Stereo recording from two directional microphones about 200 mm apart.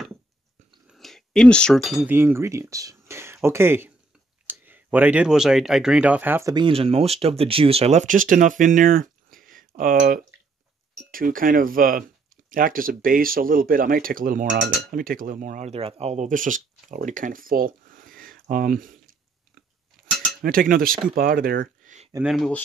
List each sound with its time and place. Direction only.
0.8 s speech: centre (ahead or behind)
6.5 s speech: 25° right (ahead or behind); by 18.9 s 45° right (ahead or behind)
20.4 s speech: 45° right (ahead or behind)
22.2 s speech: centre (ahead or behind)